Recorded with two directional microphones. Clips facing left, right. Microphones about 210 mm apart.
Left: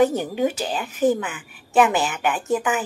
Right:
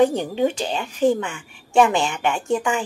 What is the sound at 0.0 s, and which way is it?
A woman's voice, 5° left (ahead or behind).